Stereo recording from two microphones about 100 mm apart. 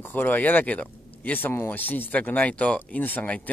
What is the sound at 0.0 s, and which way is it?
Speech, 20° left (ahead or behind).